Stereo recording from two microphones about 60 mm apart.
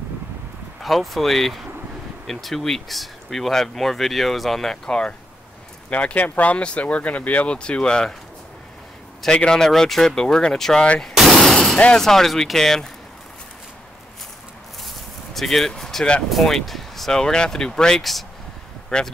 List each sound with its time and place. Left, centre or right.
0.8 s speech: centre
9.2 s speech: centre
11.1 s a sound: centre
12.0 s speech: centre
15.3 s speech: centre